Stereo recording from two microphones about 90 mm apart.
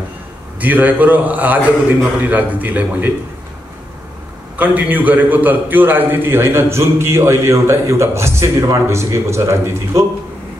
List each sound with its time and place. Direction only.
0.6 s a man's voice: 20° right (ahead or behind)
4.6 s a man's voice: 15° right (ahead or behind)